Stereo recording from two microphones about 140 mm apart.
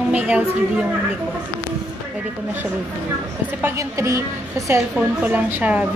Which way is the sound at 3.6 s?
20° right (ahead or behind).